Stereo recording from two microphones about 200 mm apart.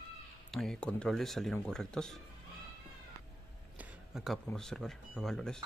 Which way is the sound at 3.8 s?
Centre (ahead or behind).